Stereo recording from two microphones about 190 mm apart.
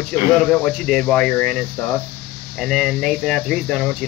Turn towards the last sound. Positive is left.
turn(degrees=5)  # may be behind; listen again after turning